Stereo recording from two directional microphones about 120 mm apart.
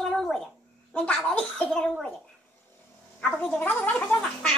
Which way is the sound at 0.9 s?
10° left (ahead or behind).